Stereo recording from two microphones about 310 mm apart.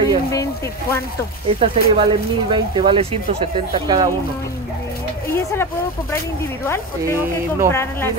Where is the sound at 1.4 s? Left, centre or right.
Centre.